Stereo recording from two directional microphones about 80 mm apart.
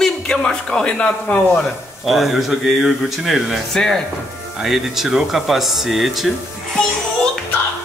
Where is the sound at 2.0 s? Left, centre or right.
Centre.